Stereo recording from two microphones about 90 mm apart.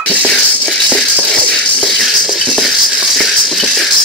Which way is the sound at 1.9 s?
Centre (ahead or behind).